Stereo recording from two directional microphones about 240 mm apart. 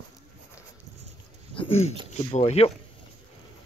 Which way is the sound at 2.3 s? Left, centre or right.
Left.